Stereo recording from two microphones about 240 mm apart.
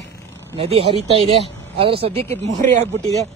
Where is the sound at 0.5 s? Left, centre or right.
Right.